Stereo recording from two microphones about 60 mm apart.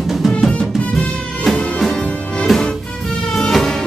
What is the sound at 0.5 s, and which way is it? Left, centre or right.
Music, centre.